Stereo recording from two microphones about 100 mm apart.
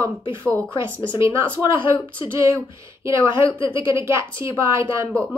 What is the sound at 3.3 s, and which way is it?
Speech, 55° left (ahead or behind).